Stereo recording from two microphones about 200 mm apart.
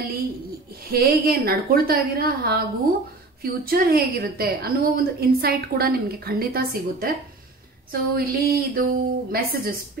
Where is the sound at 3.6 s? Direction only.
45° right (ahead or behind).